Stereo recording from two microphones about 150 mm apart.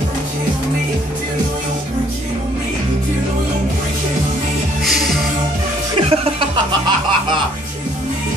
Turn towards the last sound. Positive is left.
turn(degrees=-35)  # may be behind; listen again after turning